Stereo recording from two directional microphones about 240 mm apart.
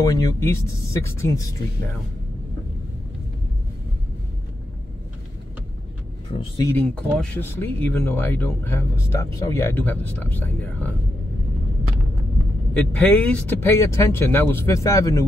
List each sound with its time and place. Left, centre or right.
0.0 s speech: centre
6.3 s speech: centre
6.7 s speech: centre
12.7 s speech: centre